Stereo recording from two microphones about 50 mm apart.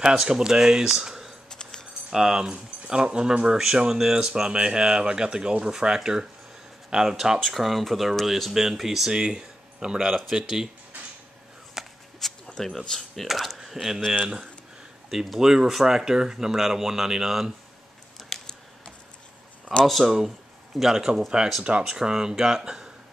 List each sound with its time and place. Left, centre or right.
0.0 s speech: centre
1.5 s dog: centre
2.0 s speech: centre
10.3 s speech: centre
11.8 s a sound: centre
12.4 s a sound: centre
12.7 s speech: centre
14.0 s speech: centre
15.0 s speech: centre
18.3 s a sound: centre
19.8 s speech: centre
21.6 s speech: centre